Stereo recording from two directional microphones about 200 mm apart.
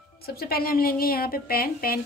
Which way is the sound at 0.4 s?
50° left (ahead or behind).